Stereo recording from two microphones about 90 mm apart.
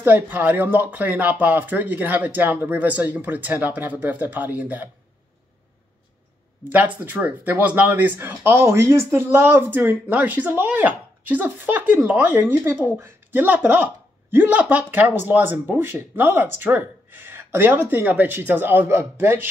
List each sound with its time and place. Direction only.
0.0 s speech: 20° right (ahead or behind)
7.1 s speech: 20° right (ahead or behind)